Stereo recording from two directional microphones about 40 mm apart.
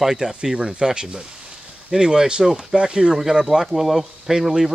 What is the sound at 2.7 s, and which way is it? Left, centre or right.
Speech, right.